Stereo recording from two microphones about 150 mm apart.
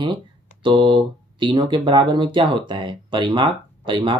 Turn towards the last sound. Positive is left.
turn(degrees=-30)  # may be behind; listen again after turning